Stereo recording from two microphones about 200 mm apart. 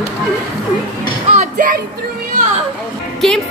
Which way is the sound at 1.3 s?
40° right (ahead or behind).